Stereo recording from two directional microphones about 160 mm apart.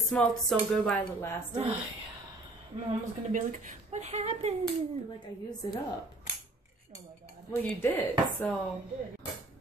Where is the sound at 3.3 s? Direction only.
50° right (ahead or behind).